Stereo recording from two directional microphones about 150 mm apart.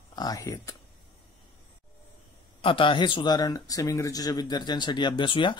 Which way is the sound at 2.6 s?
35° left (ahead or behind).